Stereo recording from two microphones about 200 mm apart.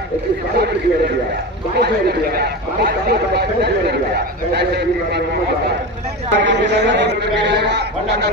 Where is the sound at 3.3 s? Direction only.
55° right (ahead or behind).